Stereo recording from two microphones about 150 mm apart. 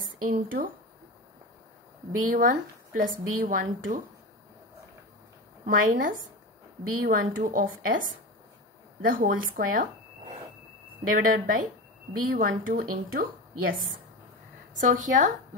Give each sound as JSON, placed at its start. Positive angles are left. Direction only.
{"t": 0.2, "sound": "a woman's voice", "side_deg": -70}
{"t": 2.3, "sound": "a woman's voice", "side_deg": -60}
{"t": 5.7, "sound": "a woman's voice", "side_deg": -65}
{"t": 11.1, "sound": "a woman's voice", "side_deg": -70}
{"t": 14.7, "sound": "a woman's voice", "side_deg": -60}